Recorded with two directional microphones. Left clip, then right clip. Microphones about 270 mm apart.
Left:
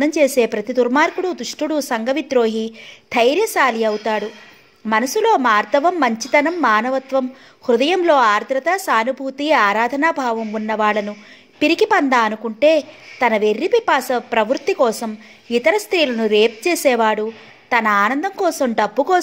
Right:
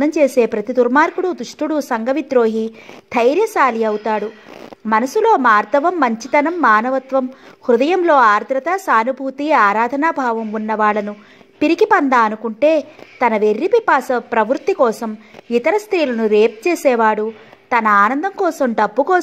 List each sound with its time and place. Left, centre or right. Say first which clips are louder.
0.0 s a woman's voice: right 1 dB; right